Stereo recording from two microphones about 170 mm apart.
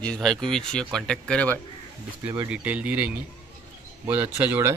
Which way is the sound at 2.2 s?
20° right (ahead or behind).